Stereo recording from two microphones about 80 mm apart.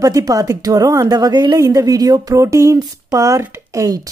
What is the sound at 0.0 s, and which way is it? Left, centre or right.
Speech, right.